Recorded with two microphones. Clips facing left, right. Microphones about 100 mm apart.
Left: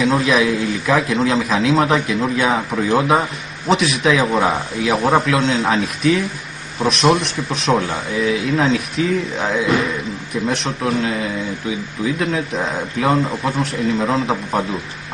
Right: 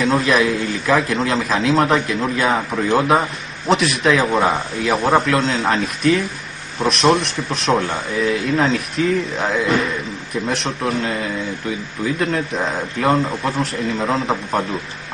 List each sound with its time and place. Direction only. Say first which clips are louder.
0.0 s a man's voice: left 1 dB; centre (ahead or behind)